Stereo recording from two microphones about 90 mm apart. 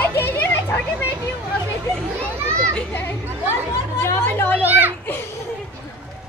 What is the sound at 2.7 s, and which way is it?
Speech, 20° left (ahead or behind).